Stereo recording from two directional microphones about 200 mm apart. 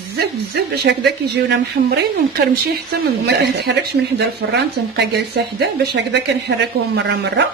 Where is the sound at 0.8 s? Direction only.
55° right (ahead or behind).